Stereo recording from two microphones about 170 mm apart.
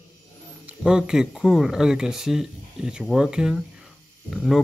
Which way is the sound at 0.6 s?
5° right (ahead or behind).